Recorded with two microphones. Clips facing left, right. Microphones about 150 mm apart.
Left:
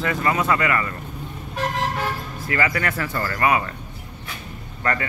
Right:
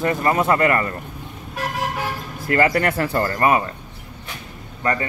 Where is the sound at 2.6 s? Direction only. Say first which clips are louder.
Right 6 dB; 35° right (ahead or behind).